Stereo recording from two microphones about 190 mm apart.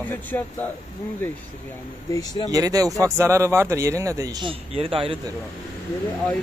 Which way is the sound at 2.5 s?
20° right (ahead or behind).